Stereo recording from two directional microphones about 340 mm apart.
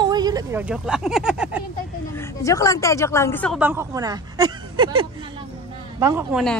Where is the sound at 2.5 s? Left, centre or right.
Centre.